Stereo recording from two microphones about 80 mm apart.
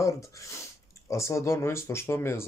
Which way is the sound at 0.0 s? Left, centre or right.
Left.